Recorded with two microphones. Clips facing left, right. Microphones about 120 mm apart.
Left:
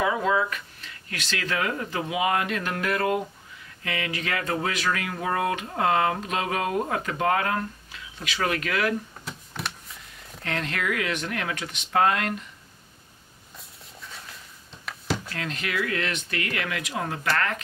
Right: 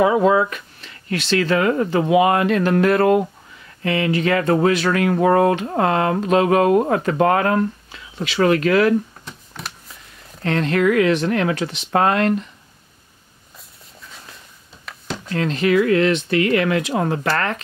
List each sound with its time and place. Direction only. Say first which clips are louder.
0.0 s speech: right 9 dB; 35° right (ahead or behind)
0.5 s speech: right 2 dB; 30° right (ahead or behind)
1.7 s speech: right 12 dB; 40° right (ahead or behind)
3.0 s speech: right 10 dB; 50° right (ahead or behind)
3.8 s speech: right 11 dB; 35° right (ahead or behind)
9.2 s a sound: even; centre (ahead or behind)
10.4 s speech: right 12 dB; 35° right (ahead or behind)
15.2 s speech: right 13 dB; 30° right (ahead or behind)